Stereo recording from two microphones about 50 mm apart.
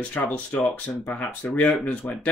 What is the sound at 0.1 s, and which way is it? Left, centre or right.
Speech, left.